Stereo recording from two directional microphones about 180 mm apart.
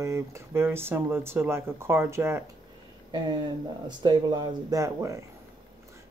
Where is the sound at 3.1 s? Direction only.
25° right (ahead or behind).